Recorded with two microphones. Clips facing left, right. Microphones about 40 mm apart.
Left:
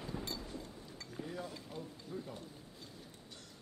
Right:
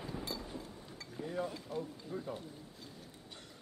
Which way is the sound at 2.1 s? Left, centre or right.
Centre.